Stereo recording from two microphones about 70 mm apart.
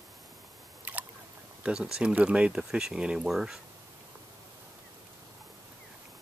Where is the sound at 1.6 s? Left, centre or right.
Centre.